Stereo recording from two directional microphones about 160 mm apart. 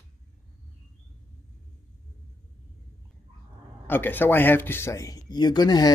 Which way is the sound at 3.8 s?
10° left (ahead or behind).